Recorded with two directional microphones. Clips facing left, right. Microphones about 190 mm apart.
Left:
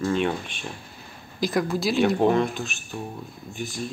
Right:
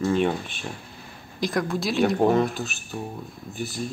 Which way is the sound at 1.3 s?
Centre (ahead or behind).